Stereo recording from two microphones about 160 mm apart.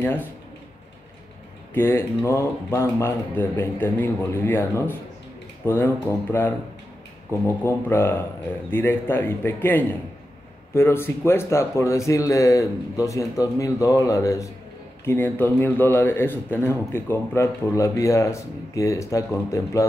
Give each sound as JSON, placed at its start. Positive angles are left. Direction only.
{"t": 0.0, "sound": "a man's voice", "side_deg": 10}
{"t": 1.7, "sound": "a man's voice", "side_deg": 15}
{"t": 6.1, "sound": "a man's voice", "side_deg": 15}
{"t": 7.2, "sound": "a man's voice", "side_deg": 15}